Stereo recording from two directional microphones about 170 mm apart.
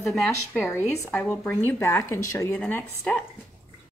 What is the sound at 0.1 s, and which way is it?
Speech, centre (ahead or behind).